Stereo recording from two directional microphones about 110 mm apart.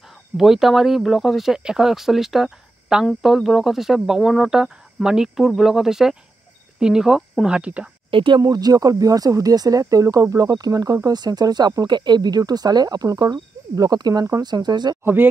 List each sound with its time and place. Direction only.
0.4 s speech: centre (ahead or behind)
8.1 s speech: 50° right (ahead or behind)
8.4 s speech: 35° right (ahead or behind)